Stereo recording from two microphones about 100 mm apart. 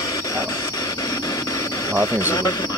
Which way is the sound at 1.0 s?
35° left (ahead or behind).